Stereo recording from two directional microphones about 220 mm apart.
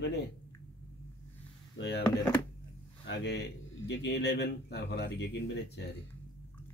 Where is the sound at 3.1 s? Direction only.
50° left (ahead or behind).